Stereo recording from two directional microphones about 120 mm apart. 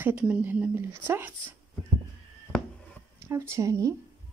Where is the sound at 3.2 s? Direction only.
20° right (ahead or behind).